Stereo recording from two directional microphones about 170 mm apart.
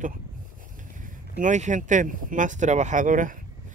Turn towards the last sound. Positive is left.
turn(degrees=-50)  # may be behind; listen again after turning